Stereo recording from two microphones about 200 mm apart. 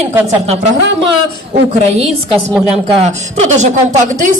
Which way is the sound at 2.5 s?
5° right (ahead or behind).